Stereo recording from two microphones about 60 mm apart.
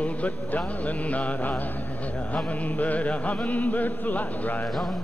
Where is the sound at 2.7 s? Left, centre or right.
Left.